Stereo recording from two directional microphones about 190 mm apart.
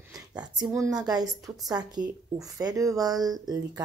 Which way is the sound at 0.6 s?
15° right (ahead or behind).